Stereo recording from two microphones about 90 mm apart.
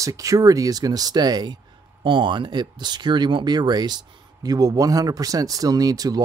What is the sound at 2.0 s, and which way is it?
Speech, 60° right (ahead or behind).